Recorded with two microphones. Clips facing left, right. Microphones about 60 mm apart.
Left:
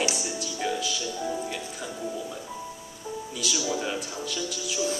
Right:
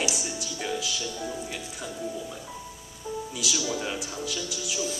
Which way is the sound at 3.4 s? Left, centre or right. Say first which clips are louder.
Left 2 dB; centre.